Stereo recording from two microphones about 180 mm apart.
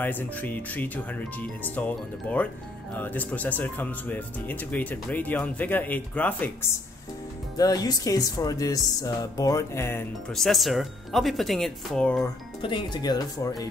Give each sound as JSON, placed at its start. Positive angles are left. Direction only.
{"t": 0.0, "sound": "speech", "side_deg": 10}
{"t": 7.5, "sound": "speech", "side_deg": 20}
{"t": 10.3, "sound": "speech", "side_deg": 0}
{"t": 12.6, "sound": "speech", "side_deg": 25}